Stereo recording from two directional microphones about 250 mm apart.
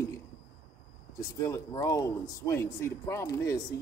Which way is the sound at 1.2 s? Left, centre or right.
Centre.